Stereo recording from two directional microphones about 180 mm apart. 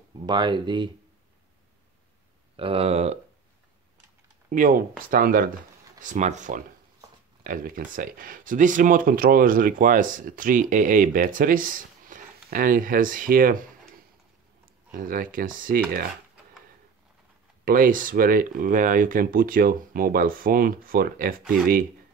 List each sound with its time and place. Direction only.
0.3 s speech: 25° right (ahead or behind)
2.5 s speech: 30° right (ahead or behind)
4.5 s speech: 50° right (ahead or behind)
14.9 s speech: 50° right (ahead or behind)
17.6 s speech: 50° right (ahead or behind)